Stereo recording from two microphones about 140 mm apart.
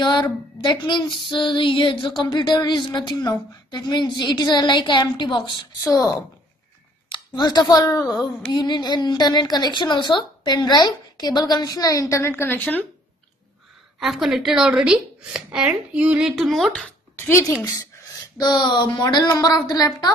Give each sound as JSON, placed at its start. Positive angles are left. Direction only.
{"t": 0.0, "sound": "a sound", "side_deg": 35}
{"t": 9.8, "sound": "a woman's voice", "side_deg": 35}
{"t": 13.9, "sound": "a woman's voice", "side_deg": 0}
{"t": 17.2, "sound": "speech", "side_deg": 20}
{"t": 18.4, "sound": "a woman's voice", "side_deg": 30}